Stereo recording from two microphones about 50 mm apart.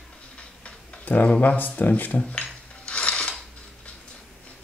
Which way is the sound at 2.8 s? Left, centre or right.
Left.